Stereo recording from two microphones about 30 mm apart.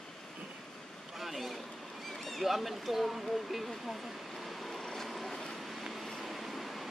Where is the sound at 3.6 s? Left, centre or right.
Centre.